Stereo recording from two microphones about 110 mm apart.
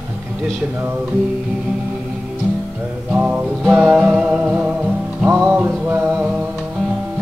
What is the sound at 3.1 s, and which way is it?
Music, 15° right (ahead or behind).